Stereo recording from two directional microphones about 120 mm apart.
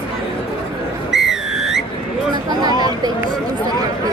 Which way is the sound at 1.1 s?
5° right (ahead or behind).